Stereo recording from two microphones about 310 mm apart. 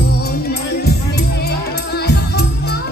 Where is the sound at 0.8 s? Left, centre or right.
Left.